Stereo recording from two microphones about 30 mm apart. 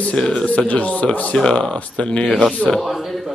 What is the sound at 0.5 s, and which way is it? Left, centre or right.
Speech, left.